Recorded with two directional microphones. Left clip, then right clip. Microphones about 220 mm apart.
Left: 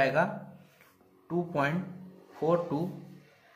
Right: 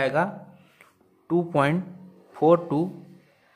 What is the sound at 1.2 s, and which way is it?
Speech, 40° right (ahead or behind).